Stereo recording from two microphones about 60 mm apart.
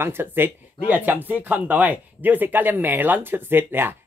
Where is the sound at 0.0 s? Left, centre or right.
Right.